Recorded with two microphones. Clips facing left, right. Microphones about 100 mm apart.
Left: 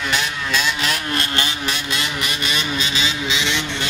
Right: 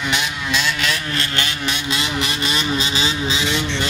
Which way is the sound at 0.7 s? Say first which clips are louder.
Even; 40° left (ahead or behind).